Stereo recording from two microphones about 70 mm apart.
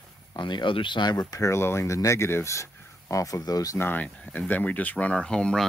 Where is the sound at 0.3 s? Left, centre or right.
Left.